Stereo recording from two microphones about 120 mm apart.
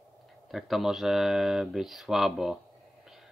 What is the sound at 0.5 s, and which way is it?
Speech, centre (ahead or behind).